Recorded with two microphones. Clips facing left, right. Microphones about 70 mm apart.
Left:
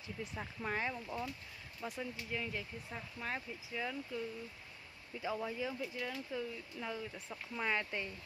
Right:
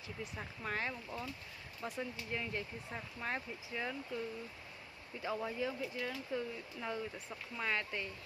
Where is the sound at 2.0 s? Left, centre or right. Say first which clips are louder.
Right 1 dB; centre.